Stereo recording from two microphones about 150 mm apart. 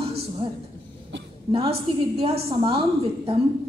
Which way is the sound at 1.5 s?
40° right (ahead or behind).